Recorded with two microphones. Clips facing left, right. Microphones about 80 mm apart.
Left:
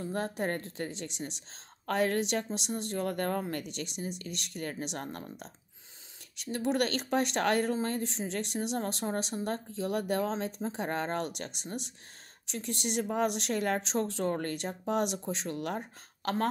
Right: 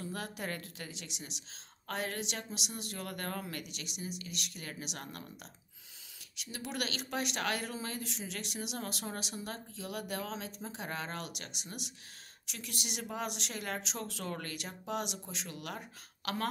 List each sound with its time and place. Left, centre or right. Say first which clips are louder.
0.0 s speech: left 7 dB; left
1.9 s speech: left 9 dB; left